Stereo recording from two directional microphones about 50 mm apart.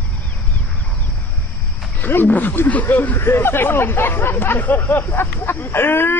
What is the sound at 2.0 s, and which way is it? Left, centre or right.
Speech, left.